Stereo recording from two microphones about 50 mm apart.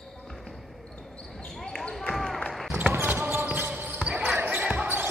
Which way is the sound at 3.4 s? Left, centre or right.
Right.